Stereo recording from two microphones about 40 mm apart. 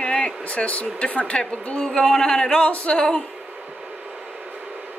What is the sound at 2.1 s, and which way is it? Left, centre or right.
Speech, centre.